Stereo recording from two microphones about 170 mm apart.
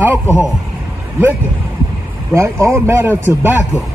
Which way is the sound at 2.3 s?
15° right (ahead or behind).